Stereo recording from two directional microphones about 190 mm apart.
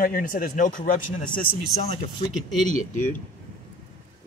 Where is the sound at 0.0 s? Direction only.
50° left (ahead or behind).